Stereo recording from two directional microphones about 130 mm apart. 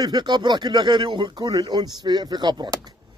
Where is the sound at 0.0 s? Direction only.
30° right (ahead or behind).